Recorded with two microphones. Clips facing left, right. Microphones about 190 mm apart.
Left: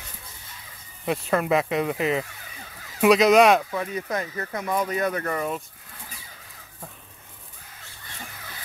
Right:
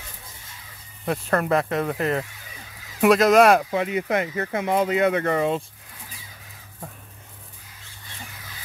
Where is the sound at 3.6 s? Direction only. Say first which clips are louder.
Right 5 dB; 20° right (ahead or behind).